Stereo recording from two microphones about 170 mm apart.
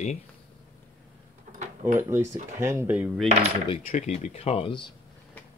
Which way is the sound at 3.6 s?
35° left (ahead or behind).